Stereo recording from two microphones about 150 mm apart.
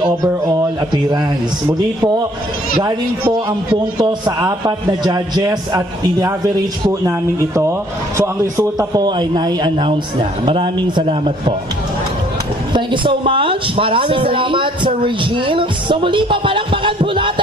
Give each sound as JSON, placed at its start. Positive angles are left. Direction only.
{"t": 0.0, "sound": "a man's voice", "side_deg": -25}
{"t": 4.0, "sound": "a man's voice", "side_deg": -25}
{"t": 12.7, "sound": "speech", "side_deg": -35}